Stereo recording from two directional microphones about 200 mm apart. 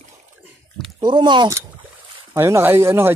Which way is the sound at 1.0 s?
20° right (ahead or behind).